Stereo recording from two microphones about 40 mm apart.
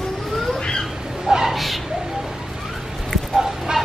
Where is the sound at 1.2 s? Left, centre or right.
Centre.